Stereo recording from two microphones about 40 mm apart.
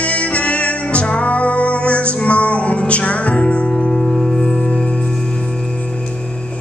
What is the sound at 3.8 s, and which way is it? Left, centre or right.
Music, centre.